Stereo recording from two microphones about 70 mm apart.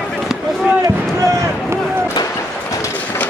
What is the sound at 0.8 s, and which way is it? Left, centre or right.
Speech, right.